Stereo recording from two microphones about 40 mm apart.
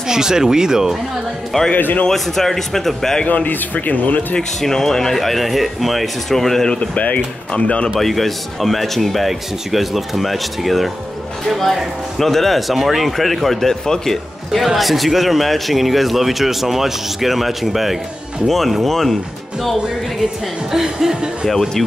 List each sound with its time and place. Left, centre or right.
0.1 s speech: centre
1.5 s a man's voice: centre
3.3 s speech: left
4.6 s a man's voice: centre
7.0 s speech: left
8.0 s a man's voice: centre
14.6 s a man's voice: centre
20.7 s speech: centre
21.5 s a man's voice: centre